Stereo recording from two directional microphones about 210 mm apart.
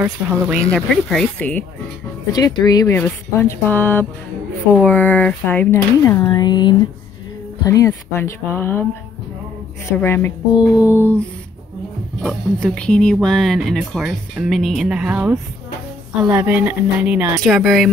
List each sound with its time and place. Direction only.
0.0 s speech: 5° right (ahead or behind)
2.3 s speech: 20° left (ahead or behind)
9.9 s speech: 10° left (ahead or behind)
12.2 s speech: centre (ahead or behind)